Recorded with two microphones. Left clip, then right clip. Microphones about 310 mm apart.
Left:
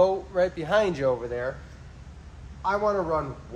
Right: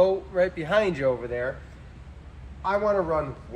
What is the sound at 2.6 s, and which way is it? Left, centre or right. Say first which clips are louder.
Speech: right 1 dB; centre.